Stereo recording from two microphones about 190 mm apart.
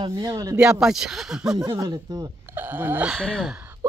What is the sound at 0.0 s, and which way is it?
Speech, 25° right (ahead or behind).